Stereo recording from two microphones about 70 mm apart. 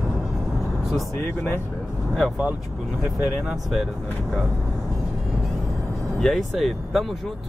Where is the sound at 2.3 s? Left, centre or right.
Right.